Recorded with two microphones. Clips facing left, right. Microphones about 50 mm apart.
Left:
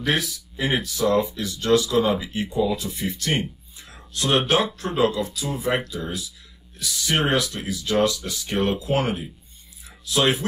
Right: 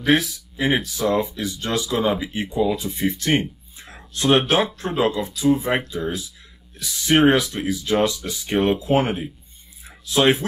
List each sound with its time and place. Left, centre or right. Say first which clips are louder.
0.0 s speech: right 5 dB; centre; by 5.3 s right
5.3 s speech: right 5 dB; centre
9.8 s a sound: right 4 dB; right